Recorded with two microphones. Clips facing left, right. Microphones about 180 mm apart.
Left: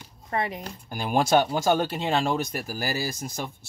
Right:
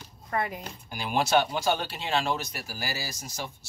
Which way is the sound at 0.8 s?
50° left (ahead or behind).